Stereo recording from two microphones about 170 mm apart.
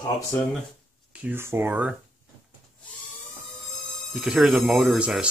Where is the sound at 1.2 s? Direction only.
15° right (ahead or behind).